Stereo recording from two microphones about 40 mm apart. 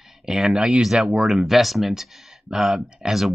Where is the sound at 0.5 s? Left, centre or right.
Right.